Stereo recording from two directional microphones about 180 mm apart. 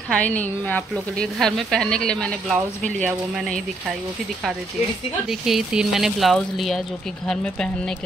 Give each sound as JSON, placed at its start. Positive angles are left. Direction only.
{"t": 0.1, "sound": "speech", "side_deg": 10}
{"t": 5.3, "sound": "speech", "side_deg": 0}